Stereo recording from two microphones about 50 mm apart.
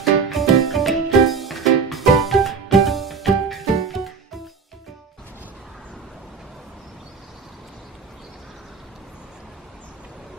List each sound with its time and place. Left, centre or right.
0.0 s music: centre